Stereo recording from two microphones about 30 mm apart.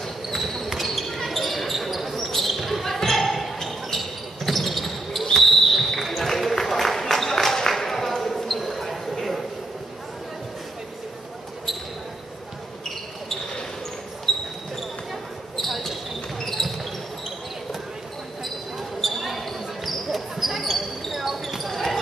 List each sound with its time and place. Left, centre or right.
0.7 s basketball bounce: centre
4.5 s basketball bounce: centre
14.3 s basketball bounce: centre
15.5 s basketball bounce: centre
18.9 s basketball bounce: centre
21.6 s basketball bounce: centre